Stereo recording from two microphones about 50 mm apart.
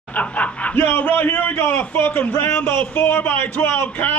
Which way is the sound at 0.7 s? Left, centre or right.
Left.